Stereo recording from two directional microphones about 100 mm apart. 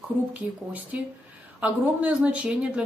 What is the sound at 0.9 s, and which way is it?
A woman's voice, 15° right (ahead or behind).